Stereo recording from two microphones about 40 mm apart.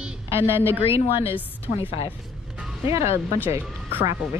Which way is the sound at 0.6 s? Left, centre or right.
Right.